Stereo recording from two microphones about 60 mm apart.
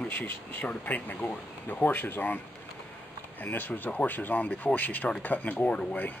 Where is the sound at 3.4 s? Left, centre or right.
Left; by 6.0 s centre.